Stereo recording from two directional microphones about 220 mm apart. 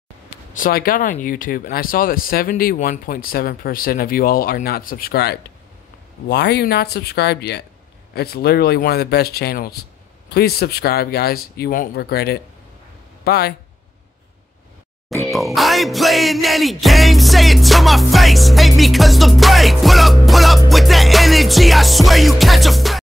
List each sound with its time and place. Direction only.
0.6 s speech: 40° left (ahead or behind)
15.3 s music: centre (ahead or behind)